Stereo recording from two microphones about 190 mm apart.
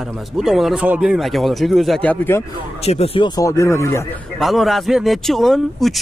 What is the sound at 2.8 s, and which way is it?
Speech, 30° left (ahead or behind).